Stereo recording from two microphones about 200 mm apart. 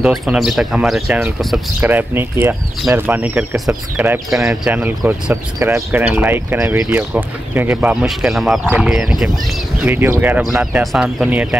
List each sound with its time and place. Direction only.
0.0 s speech: centre (ahead or behind)